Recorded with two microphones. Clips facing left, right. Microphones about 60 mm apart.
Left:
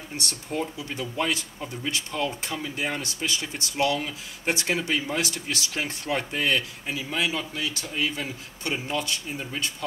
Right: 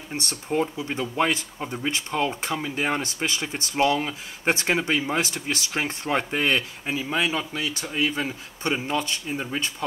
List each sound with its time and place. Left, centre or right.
0.1 s speech: right